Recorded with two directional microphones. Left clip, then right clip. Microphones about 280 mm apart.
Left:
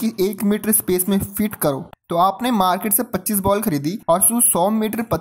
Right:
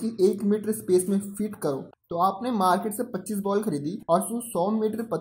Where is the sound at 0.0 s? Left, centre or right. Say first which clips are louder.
Left 2 dB; left.